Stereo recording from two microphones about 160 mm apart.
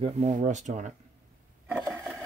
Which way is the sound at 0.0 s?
45° right (ahead or behind).